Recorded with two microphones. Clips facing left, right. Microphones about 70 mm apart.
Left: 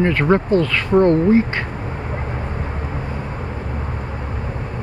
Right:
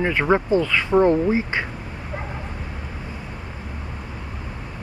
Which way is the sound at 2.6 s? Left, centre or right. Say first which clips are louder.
Left 7 dB; left.